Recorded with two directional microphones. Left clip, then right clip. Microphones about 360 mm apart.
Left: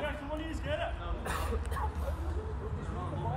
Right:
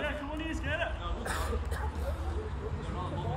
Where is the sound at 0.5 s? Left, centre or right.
Centre.